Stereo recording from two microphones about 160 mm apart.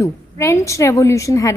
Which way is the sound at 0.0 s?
20° left (ahead or behind).